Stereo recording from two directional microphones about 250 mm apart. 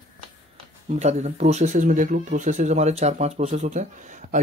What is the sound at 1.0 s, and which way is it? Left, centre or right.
Speech, right.